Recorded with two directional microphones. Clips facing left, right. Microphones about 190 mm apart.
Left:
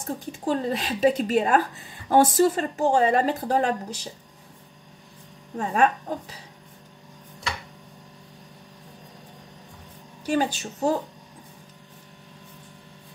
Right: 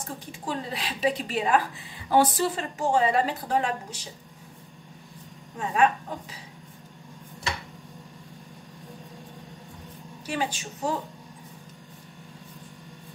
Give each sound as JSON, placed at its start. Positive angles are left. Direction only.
{"t": 0.0, "sound": "a woman's voice", "side_deg": 40}
{"t": 5.6, "sound": "a woman's voice", "side_deg": 40}
{"t": 10.2, "sound": "a woman's voice", "side_deg": 40}